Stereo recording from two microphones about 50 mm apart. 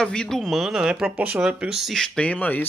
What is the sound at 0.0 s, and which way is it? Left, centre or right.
Speech, centre.